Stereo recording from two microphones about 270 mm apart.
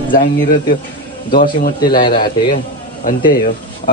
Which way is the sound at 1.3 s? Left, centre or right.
Left.